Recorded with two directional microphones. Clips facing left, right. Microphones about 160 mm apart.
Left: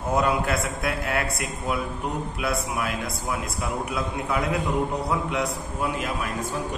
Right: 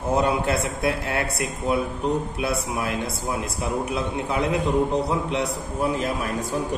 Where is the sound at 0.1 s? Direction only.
30° right (ahead or behind).